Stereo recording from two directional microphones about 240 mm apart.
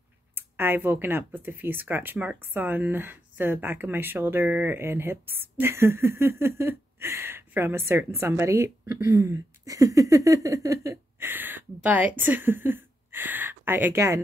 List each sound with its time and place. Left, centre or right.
0.3 s speech: centre